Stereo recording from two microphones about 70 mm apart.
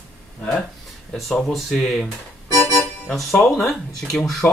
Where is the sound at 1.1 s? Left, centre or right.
Centre.